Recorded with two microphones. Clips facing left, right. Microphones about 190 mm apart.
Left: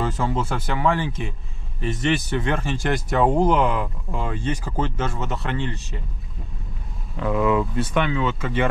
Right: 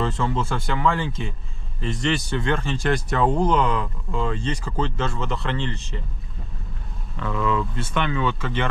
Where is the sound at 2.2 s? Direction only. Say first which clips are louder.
Even; 15° left (ahead or behind).